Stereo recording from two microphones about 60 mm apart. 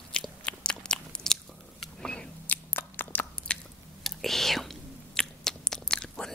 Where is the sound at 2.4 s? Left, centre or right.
Left.